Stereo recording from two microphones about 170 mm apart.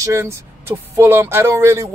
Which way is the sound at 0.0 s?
15° right (ahead or behind).